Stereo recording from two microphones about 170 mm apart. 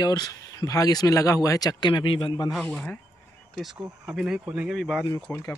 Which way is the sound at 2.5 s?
5° left (ahead or behind).